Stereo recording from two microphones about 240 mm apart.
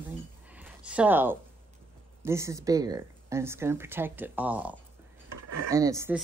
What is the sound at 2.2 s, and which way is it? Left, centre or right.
Speech, centre.